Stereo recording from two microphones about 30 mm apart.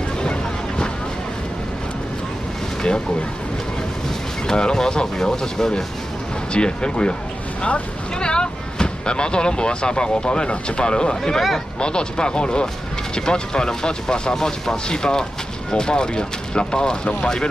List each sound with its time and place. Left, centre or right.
0.2 s boat: left
4.5 s speech: left
6.5 s speech: left